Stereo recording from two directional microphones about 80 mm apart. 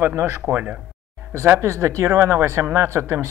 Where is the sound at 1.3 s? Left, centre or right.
Right.